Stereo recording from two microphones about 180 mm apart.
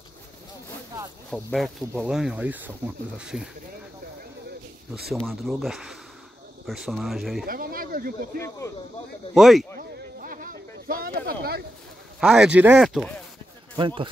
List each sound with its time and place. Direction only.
1.3 s speech: centre (ahead or behind)
5.1 s speech: centre (ahead or behind)
7.4 s speech: 55° right (ahead or behind)
8.4 s speech: 15° left (ahead or behind)
9.3 s speech: centre (ahead or behind)
9.8 s a sound: 50° right (ahead or behind)
12.2 s speech: centre (ahead or behind)
13.7 s speech: 25° right (ahead or behind)